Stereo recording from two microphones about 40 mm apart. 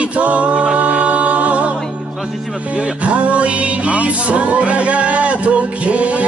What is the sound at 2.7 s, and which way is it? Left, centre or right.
Music, right.